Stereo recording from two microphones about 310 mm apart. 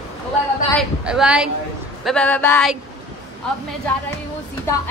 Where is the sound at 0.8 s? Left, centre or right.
Centre.